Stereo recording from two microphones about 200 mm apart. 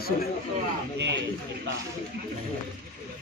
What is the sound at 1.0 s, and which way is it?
Speech, 60° right (ahead or behind).